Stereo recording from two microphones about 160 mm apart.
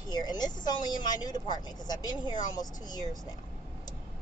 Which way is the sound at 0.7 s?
25° left (ahead or behind).